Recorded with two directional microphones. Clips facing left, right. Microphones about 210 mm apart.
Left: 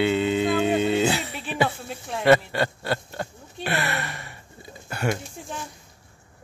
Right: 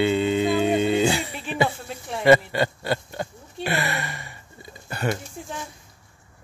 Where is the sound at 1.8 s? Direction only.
Centre (ahead or behind).